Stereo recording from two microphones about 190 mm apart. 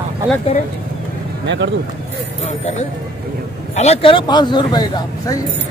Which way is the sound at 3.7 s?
35° left (ahead or behind).